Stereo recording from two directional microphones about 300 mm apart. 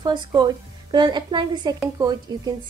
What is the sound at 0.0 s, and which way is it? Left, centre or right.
A woman's voice, centre.